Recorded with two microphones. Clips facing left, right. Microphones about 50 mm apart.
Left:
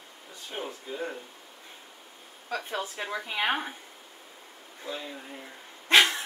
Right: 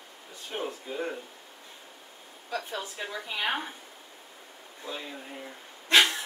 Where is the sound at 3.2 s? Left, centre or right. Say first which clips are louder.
Left 3 dB; left.